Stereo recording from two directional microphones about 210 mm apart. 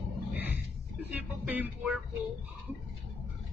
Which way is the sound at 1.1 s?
10° right (ahead or behind).